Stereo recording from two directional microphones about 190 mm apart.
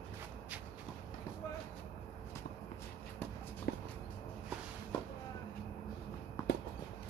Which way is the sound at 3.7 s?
55° left (ahead or behind).